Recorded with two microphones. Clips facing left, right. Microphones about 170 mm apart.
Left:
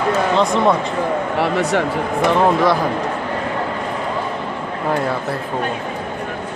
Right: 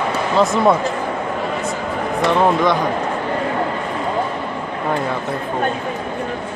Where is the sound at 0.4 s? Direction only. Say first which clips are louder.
Right 4 dB; 5° right (ahead or behind).